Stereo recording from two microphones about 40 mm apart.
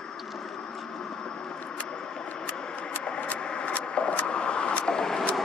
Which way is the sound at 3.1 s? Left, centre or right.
Left.